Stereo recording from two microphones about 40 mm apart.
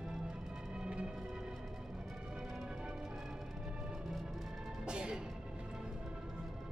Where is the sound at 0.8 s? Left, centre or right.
Right.